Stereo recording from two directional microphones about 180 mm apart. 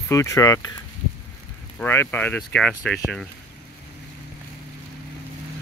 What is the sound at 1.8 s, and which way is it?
Speech, 10° left (ahead or behind).